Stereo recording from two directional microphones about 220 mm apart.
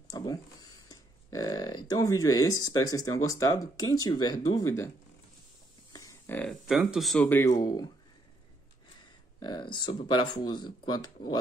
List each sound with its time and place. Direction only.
0.1 s speech: 15° left (ahead or behind)
5.9 s a sound: 10° left (ahead or behind)
6.7 s speech: centre (ahead or behind); by 7.9 s 20° left (ahead or behind)
9.4 s speech: 20° left (ahead or behind)